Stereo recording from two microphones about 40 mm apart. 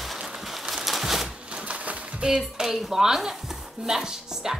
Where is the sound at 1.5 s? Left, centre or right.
Right.